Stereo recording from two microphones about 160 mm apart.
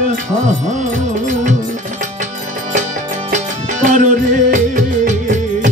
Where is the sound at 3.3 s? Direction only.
50° right (ahead or behind).